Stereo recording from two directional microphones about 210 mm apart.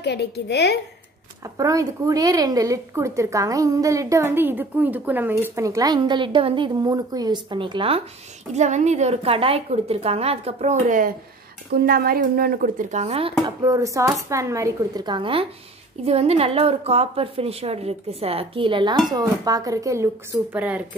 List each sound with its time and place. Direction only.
0.0 s a woman's voice: 55° left (ahead or behind)
1.4 s a woman's voice: 15° right (ahead or behind); by 13.3 s 30° right (ahead or behind)
13.6 s a woman's voice: 15° right (ahead or behind)